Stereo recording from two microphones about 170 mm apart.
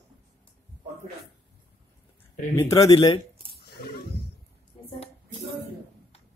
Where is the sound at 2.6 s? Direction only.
20° left (ahead or behind).